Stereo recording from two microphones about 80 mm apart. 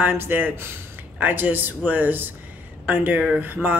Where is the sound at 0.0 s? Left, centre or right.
Right.